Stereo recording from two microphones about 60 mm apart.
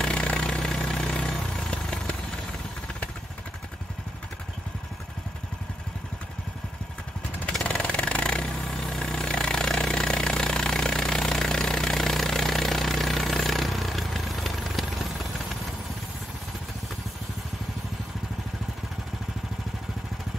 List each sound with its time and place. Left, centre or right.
0.0 s vehicle: centre
7.6 s vehicle: centre
8.5 s vehicle: centre